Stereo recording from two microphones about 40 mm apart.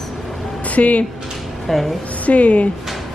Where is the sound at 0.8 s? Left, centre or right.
Left.